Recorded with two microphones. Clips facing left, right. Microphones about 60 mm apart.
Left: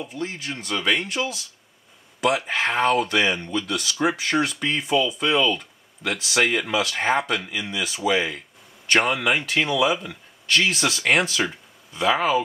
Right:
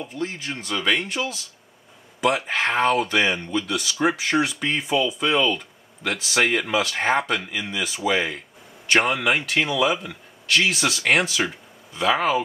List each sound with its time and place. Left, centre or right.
0.1 s speech: centre
7.8 s speech: centre
8.1 s speech: centre
11.2 s a sound: centre
12.0 s speech: centre